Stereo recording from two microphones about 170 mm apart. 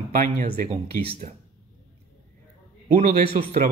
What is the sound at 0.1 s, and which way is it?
Speech, 55° right (ahead or behind).